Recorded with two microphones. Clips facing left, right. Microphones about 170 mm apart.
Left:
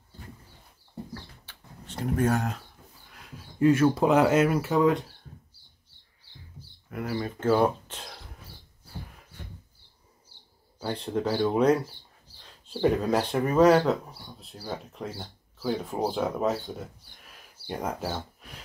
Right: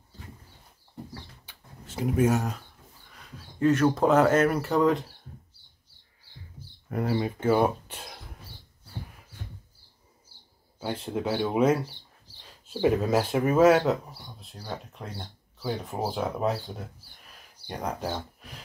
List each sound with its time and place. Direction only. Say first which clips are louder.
1.4 s a sound: left 1 dB; 10° right (ahead or behind)
3.2 s speech: left 3 dB; 10° left (ahead or behind)
6.9 s speech: right 5 dB; 35° right (ahead or behind)
7.2 s speech: left 1 dB; 15° right (ahead or behind)
10.8 s speech: left 1 dB; 5° right (ahead or behind)
17.6 s speech: even; centre (ahead or behind)